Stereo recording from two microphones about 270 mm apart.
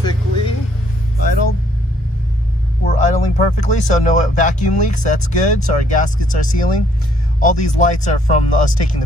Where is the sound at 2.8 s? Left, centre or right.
Left.